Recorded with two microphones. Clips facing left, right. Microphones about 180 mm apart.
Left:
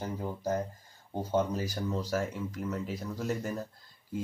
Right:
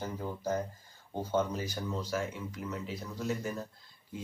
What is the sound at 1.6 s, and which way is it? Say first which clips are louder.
Speech: left 3 dB; 40° left (ahead or behind).